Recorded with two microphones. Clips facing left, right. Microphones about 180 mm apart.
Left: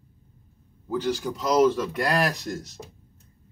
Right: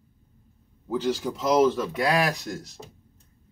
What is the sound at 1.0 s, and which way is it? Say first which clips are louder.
Speech: right 2 dB; centre (ahead or behind).